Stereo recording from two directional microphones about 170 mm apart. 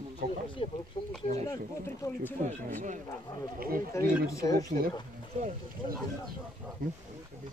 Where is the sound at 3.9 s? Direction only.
15° left (ahead or behind).